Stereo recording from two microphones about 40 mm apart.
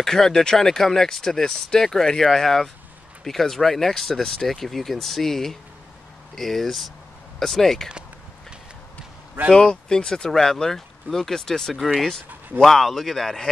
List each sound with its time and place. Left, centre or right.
0.0 s speech: centre
9.5 s speech: centre